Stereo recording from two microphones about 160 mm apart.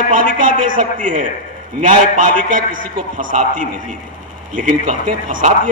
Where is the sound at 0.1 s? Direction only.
55° right (ahead or behind).